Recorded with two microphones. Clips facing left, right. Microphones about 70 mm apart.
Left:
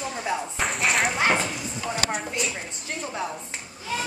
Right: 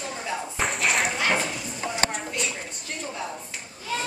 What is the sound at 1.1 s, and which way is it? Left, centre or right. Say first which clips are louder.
Bow-wow: left 2 dB; centre.